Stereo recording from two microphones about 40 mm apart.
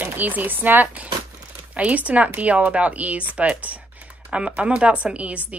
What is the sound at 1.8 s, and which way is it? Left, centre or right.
A woman's voice, right.